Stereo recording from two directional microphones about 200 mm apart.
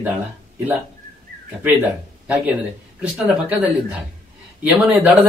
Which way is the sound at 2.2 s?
5° right (ahead or behind).